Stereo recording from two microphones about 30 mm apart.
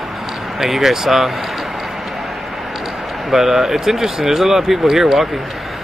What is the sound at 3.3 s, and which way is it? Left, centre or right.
Speech, centre.